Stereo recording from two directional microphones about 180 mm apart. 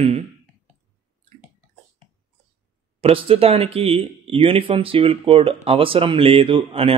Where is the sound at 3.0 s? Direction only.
30° right (ahead or behind).